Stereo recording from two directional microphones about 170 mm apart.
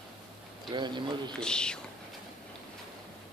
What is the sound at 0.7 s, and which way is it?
Speech, 25° right (ahead or behind).